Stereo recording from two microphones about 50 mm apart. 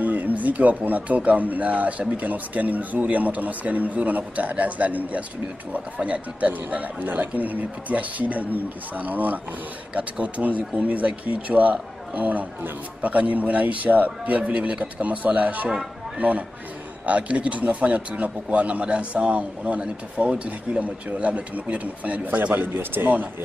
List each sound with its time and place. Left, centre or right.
0.0 s a man's voice: right